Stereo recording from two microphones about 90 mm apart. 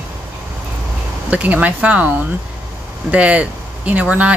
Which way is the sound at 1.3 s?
15° right (ahead or behind).